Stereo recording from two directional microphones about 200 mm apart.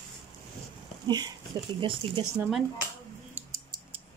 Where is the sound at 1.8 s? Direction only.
25° right (ahead or behind).